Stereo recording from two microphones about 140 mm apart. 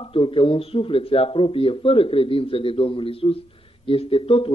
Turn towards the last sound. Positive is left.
turn(degrees=40)  # may be behind; listen again after turning